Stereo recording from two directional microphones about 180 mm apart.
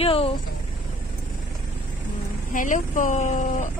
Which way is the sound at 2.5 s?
45° left (ahead or behind).